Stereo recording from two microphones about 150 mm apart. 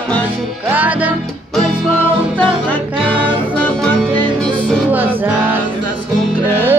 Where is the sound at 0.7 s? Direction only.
10° right (ahead or behind).